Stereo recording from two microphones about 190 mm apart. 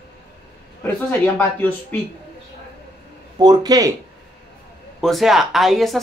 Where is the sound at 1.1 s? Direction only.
10° left (ahead or behind).